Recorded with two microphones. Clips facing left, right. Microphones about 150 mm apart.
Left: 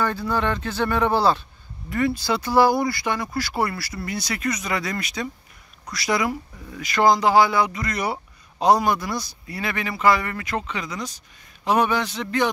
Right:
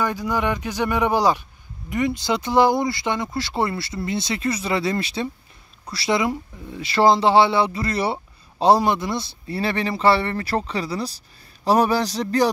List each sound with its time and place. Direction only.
0.0 s speech: 15° right (ahead or behind); by 12.4 s 35° right (ahead or behind)